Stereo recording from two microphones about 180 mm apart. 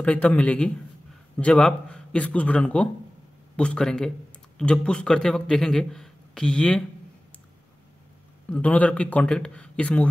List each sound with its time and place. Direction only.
0.0 s a man's voice: 5° left (ahead or behind)
8.5 s speech: 10° left (ahead or behind)